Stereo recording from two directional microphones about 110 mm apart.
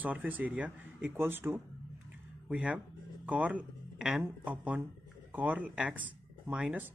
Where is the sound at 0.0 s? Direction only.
15° right (ahead or behind).